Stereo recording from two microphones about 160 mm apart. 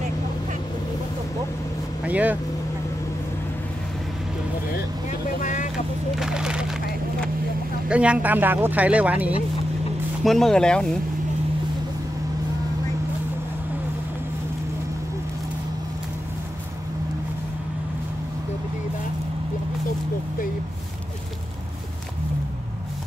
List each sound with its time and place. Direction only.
2.0 s speech: 10° right (ahead or behind)
5.4 s vehicle: 50° left (ahead or behind)
6.1 s splinter: 5° right (ahead or behind)
7.9 s speech: 5° right (ahead or behind)
10.2 s speech: centre (ahead or behind)